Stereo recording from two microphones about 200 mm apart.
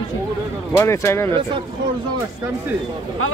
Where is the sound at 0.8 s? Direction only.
15° left (ahead or behind).